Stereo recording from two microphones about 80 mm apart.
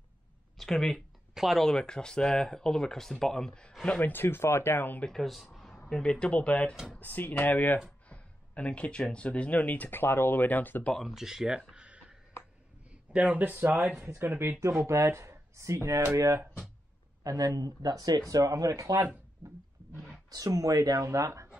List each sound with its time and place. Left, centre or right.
0.6 s speech: centre
1.3 s a sound: centre
1.6 s speech: centre
4.0 s speech: left
5.0 s speech: centre
5.9 s speech: centre
10.9 s speech: centre
11.7 s a sound: centre
13.1 s speech: centre
14.9 s speech: right
17.2 s speech: right
20.2 s speech: right